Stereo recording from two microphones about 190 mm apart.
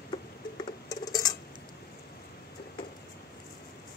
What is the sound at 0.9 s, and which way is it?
Cutlery, 20° left (ahead or behind).